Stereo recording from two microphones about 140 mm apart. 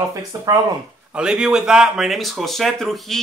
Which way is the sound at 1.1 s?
5° right (ahead or behind).